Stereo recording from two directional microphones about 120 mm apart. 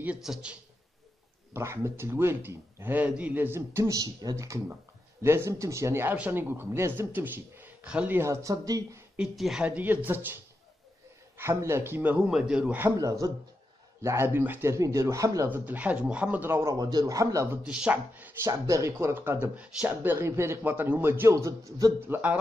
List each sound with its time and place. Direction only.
0.0 s speech: 5° right (ahead or behind)
1.5 s a man's voice: 20° right (ahead or behind)
8.2 s a man's voice: 25° right (ahead or behind)
9.1 s a man's voice: 5° right (ahead or behind)
12.3 s speech: 5° right (ahead or behind)
12.8 s a man's voice: 25° right (ahead or behind)
17.6 s speech: 10° right (ahead or behind)
18.5 s a man's voice: 25° right (ahead or behind)
22.0 s speech: 15° right (ahead or behind)